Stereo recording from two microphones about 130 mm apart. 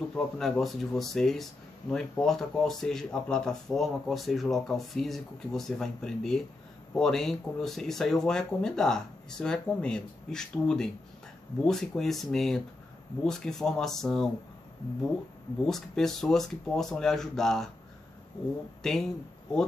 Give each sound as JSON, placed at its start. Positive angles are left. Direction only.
{"t": 0.1, "sound": "speech", "side_deg": 5}
{"t": 15.6, "sound": "speech", "side_deg": 5}
{"t": 18.8, "sound": "speech", "side_deg": 5}